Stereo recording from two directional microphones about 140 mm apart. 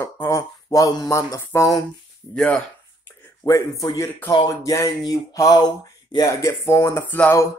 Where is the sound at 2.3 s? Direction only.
5° left (ahead or behind).